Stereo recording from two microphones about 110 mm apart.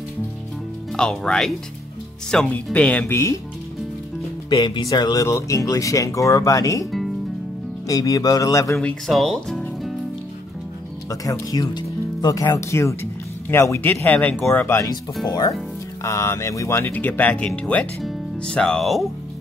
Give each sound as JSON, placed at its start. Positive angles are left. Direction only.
{"t": 0.9, "sound": "speech", "side_deg": 5}
{"t": 4.5, "sound": "speech", "side_deg": 40}
{"t": 7.9, "sound": "speech", "side_deg": 30}
{"t": 8.7, "sound": "speech", "side_deg": 0}
{"t": 11.1, "sound": "speech", "side_deg": 30}
{"t": 16.0, "sound": "speech", "side_deg": 25}